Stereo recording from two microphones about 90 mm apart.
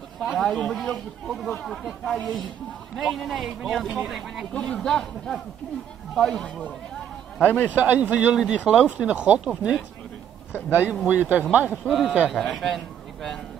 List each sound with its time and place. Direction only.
0.4 s speech: 5° left (ahead or behind)
4.6 s a man's voice: 10° left (ahead or behind)
7.7 s speech: 20° right (ahead or behind)
10.7 s speech: 20° right (ahead or behind)
11.7 s a man's voice: centre (ahead or behind)